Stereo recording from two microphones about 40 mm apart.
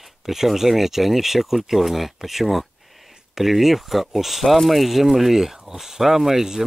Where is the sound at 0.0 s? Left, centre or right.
Centre.